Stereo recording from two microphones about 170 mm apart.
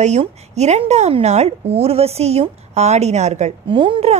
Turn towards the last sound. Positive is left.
turn(degrees=-30)  # may be behind; listen again after turning